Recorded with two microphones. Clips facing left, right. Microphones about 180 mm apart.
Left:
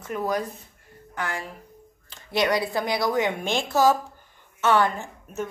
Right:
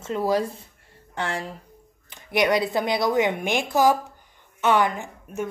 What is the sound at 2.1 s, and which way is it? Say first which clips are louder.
A woman's voice: right 2 dB; 15° right (ahead or behind).